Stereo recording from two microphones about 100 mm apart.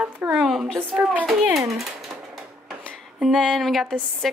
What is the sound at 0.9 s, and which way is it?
Speech, 15° right (ahead or behind).